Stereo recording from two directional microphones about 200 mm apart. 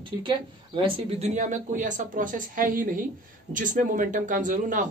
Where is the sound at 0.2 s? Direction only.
25° right (ahead or behind).